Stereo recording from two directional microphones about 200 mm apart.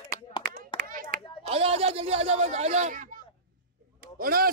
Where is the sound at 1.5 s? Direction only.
30° right (ahead or behind).